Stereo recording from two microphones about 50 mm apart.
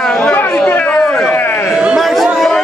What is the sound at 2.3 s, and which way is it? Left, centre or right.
Chatter, centre.